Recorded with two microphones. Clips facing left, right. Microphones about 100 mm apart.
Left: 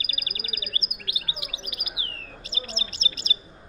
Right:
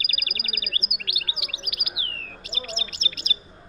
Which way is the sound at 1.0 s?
30° left (ahead or behind).